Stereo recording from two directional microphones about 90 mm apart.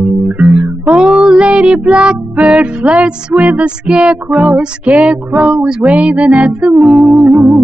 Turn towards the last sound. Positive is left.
turn(degrees=-20)  # may be behind; listen again after turning